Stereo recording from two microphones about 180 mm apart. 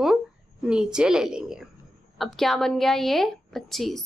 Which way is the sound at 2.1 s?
Centre (ahead or behind).